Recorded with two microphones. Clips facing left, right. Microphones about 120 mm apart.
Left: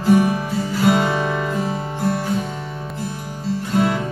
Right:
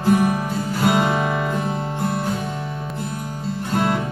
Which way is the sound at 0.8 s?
Centre (ahead or behind).